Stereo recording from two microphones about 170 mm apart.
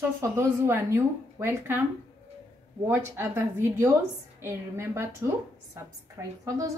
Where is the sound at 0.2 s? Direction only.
15° right (ahead or behind).